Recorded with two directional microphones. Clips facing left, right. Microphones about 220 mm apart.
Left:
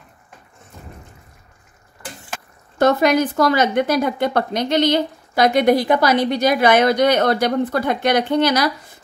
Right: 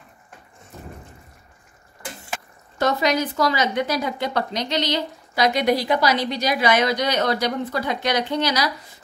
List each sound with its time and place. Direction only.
2.8 s a woman's voice: 55° left (ahead or behind)